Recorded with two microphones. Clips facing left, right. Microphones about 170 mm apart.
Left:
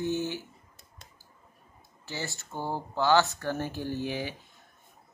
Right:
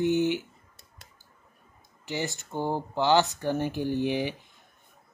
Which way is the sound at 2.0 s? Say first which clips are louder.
Right 5 dB; 20° right (ahead or behind).